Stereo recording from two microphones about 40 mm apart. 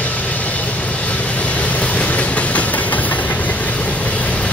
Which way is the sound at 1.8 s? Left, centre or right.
Left.